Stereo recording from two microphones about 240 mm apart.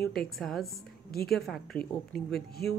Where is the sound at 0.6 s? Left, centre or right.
Left.